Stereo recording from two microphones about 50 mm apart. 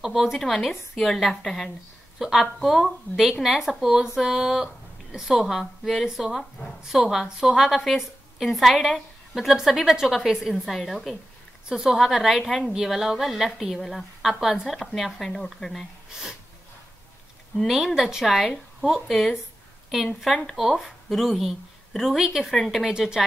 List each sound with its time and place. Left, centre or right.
0.0 s a woman's voice: centre
2.1 s a woman's voice: centre
11.7 s speech: centre
12.0 s a woman's voice: centre
17.9 s a woman's voice: centre
22.9 s speech: centre